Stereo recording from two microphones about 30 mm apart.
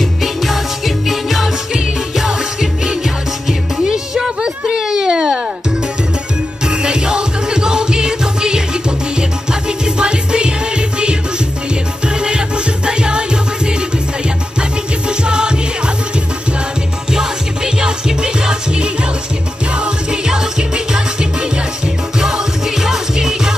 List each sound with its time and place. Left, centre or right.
0.2 s music: centre
4.4 s a sound: right
6.6 s music: right
12.1 s music: right
17.1 s music: right
20.2 s music: right